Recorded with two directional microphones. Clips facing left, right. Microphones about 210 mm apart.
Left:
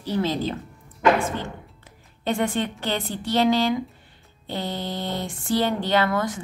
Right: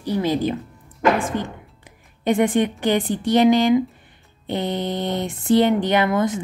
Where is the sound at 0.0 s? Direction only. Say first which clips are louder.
Right 4 dB; 15° right (ahead or behind).